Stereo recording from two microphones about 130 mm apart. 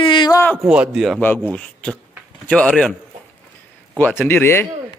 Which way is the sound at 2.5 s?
10° left (ahead or behind).